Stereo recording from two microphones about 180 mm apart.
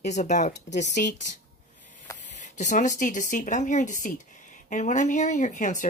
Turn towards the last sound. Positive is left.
turn(degrees=45)  # may be behind; listen again after turning